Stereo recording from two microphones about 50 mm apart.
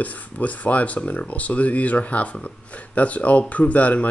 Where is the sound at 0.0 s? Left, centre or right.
Left.